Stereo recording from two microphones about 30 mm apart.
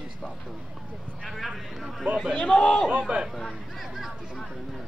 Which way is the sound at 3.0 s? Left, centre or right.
Right.